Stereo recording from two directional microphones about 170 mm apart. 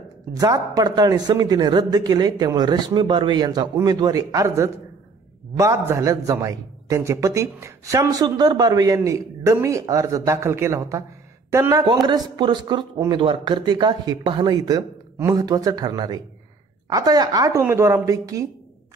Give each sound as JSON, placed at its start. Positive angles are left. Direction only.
{"t": 0.3, "sound": "a man's voice", "side_deg": -20}